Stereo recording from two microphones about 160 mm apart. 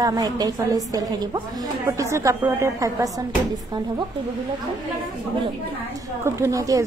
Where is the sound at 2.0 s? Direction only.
20° right (ahead or behind).